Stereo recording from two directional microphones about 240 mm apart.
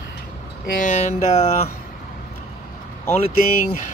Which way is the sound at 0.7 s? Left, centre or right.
Left.